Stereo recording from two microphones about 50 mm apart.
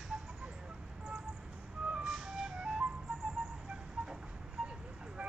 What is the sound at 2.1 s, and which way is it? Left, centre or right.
Music, centre.